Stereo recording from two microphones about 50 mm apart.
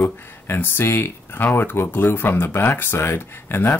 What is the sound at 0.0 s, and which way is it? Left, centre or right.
Speech, left.